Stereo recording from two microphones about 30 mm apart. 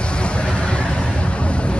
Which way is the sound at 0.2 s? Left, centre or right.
Left.